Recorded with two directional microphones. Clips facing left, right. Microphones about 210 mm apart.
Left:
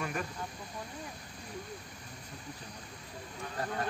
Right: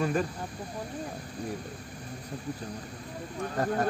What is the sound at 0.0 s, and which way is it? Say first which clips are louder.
Speech: right 9 dB; 30° right (ahead or behind).